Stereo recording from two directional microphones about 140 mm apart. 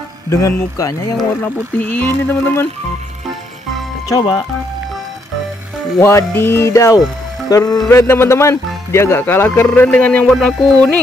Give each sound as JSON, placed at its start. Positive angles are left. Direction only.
{"t": 0.3, "sound": "music", "side_deg": 25}
{"t": 1.4, "sound": "speech", "side_deg": 10}
{"t": 4.1, "sound": "music", "side_deg": 30}
{"t": 5.9, "sound": "music", "side_deg": 20}
{"t": 7.9, "sound": "speech", "side_deg": 20}
{"t": 10.3, "sound": "music", "side_deg": 5}